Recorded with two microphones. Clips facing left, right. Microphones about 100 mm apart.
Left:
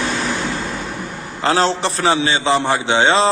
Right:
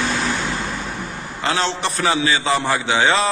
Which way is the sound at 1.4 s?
35° left (ahead or behind).